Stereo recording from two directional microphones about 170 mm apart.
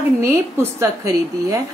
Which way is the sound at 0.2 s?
15° right (ahead or behind).